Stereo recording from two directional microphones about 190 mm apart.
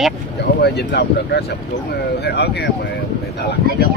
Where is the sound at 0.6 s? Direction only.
60° left (ahead or behind).